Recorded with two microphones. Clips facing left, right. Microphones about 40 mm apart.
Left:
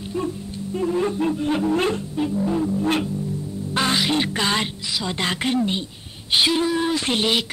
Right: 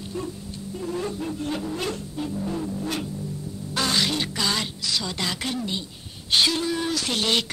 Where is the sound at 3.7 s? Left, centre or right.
Left.